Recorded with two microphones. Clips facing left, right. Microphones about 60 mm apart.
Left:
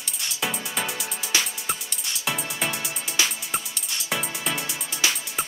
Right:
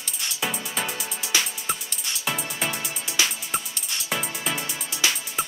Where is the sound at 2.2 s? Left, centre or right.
Centre.